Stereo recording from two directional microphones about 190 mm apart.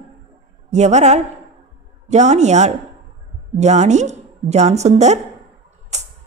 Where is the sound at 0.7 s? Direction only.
35° right (ahead or behind).